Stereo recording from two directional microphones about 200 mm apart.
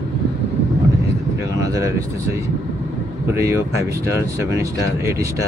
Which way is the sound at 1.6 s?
15° right (ahead or behind).